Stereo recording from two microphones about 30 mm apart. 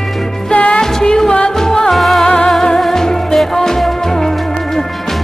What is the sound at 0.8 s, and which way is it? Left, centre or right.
Music, left.